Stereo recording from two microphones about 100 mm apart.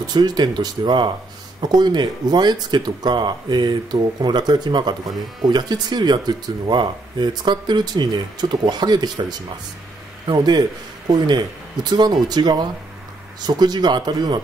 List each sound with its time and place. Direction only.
0.1 s speech: 45° right (ahead or behind)